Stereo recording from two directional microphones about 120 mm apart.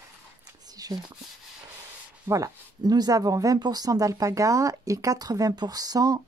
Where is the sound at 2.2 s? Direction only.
30° right (ahead or behind).